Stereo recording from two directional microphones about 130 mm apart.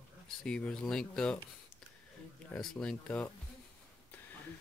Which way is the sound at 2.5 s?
5° left (ahead or behind).